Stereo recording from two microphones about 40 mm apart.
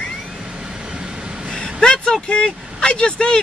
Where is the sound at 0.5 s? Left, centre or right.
Right.